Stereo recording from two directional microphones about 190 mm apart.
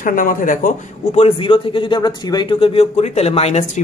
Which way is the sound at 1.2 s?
25° left (ahead or behind).